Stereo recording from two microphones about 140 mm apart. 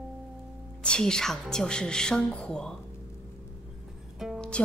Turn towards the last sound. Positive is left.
turn(degrees=5)  # may be behind; listen again after turning